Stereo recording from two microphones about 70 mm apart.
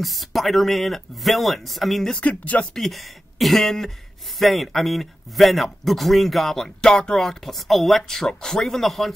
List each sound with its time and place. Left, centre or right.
0.0 s speech: centre
2.1 s speech: left
2.7 s speech: centre